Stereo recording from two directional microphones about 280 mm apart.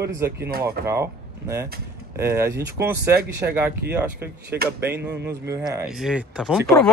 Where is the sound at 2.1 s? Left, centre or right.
Centre.